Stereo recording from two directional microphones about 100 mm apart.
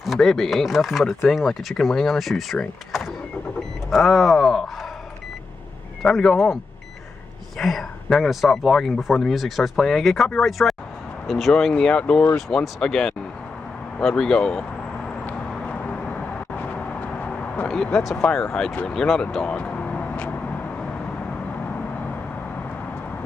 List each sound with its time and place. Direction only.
0.0 s speech: centre (ahead or behind)
6.0 s speech: 5° left (ahead or behind)
15.2 s vehicle: 10° left (ahead or behind)